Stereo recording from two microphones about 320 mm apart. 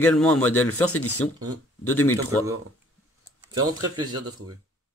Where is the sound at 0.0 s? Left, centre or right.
Centre.